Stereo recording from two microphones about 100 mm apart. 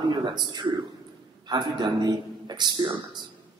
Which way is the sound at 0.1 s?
45° right (ahead or behind).